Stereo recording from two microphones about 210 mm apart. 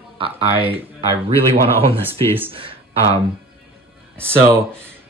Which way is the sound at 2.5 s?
25° right (ahead or behind).